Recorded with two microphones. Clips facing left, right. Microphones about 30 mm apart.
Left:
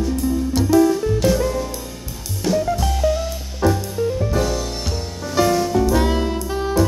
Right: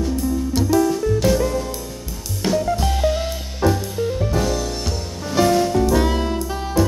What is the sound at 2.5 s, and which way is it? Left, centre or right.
Music, centre.